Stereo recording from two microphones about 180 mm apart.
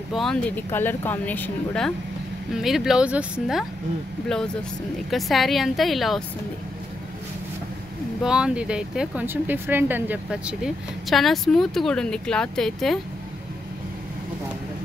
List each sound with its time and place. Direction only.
0.1 s speech: centre (ahead or behind)
5.1 s speech: centre (ahead or behind)
8.2 s speech: 5° right (ahead or behind)